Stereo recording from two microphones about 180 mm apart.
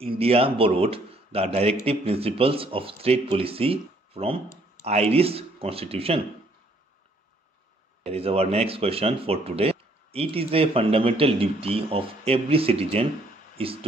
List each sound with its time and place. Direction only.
0.0 s speech: 35° right (ahead or behind)
8.0 s speech: 35° right (ahead or behind)